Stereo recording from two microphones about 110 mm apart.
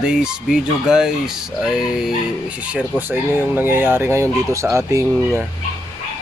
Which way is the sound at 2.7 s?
15° right (ahead or behind).